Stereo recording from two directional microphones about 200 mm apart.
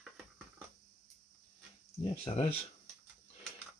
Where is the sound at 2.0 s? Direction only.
25° left (ahead or behind).